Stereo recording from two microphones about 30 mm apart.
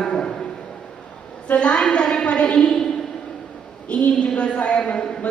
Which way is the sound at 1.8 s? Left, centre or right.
Left.